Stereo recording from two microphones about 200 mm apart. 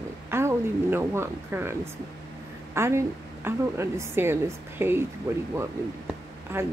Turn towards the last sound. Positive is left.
turn(degrees=-10)  # may be behind; listen again after turning